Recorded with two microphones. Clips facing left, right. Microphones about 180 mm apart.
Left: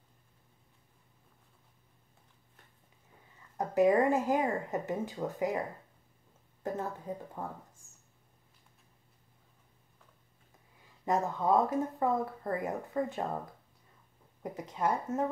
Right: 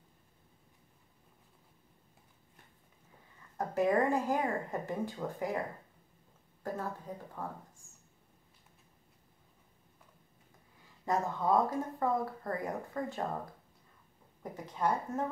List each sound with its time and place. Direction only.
3.5 s speech: 20° left (ahead or behind)
7.4 s speech: 20° left (ahead or behind)
11.1 s speech: 20° left (ahead or behind)
14.4 s speech: 20° left (ahead or behind)